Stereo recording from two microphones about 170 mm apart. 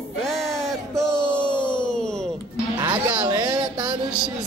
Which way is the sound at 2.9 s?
10° right (ahead or behind).